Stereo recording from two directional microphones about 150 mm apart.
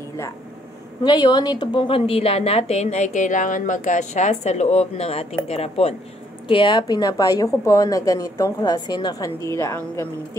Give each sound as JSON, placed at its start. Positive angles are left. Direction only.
{"t": 1.0, "sound": "a woman's voice", "side_deg": 30}
{"t": 6.4, "sound": "a woman's voice", "side_deg": 35}